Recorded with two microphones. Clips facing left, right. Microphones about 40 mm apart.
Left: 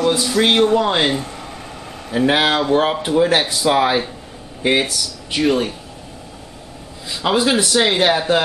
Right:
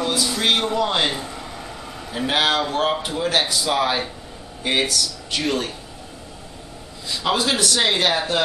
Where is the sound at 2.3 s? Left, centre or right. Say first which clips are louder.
Left 4 dB; centre.